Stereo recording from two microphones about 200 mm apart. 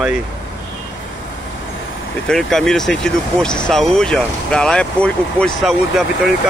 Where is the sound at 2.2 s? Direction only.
Centre (ahead or behind).